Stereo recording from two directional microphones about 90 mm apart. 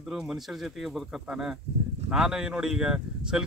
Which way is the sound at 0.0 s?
Centre (ahead or behind).